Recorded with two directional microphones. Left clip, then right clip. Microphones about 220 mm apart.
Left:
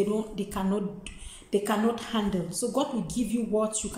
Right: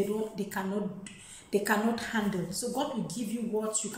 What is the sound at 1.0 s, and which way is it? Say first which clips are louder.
A woman's voice: left 3 dB; 10° left (ahead or behind).